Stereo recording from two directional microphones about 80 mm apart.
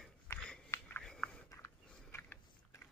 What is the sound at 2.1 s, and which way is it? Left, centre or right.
Biting, left.